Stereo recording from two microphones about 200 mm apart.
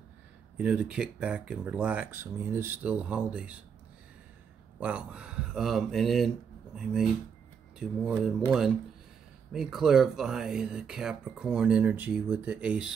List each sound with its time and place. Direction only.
0.6 s speech: 5° right (ahead or behind)
4.7 s speech: 5° right (ahead or behind)